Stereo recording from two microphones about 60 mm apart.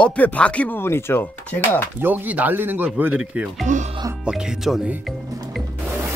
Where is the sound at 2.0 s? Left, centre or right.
Right.